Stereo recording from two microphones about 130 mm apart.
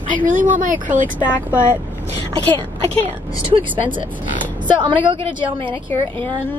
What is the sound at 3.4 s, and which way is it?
Speech, 40° right (ahead or behind).